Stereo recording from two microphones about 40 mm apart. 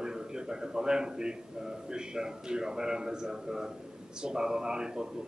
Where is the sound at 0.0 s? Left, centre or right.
Centre.